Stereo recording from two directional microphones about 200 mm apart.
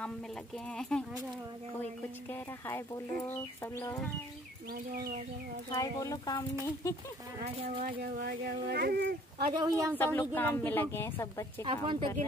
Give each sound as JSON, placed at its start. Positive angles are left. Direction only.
{"t": 0.7, "sound": "speech", "side_deg": 5}
{"t": 3.3, "sound": "a woman's voice", "side_deg": 10}
{"t": 5.7, "sound": "a woman's voice", "side_deg": 15}
{"t": 7.8, "sound": "speech", "side_deg": -45}
{"t": 9.5, "sound": "a woman's voice", "side_deg": -20}
{"t": 9.9, "sound": "a woman's voice", "side_deg": 10}
{"t": 11.6, "sound": "a woman's voice", "side_deg": -25}